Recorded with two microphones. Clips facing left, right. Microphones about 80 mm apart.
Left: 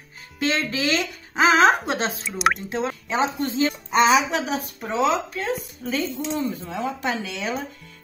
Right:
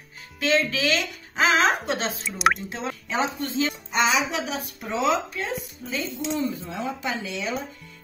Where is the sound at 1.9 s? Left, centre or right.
Left.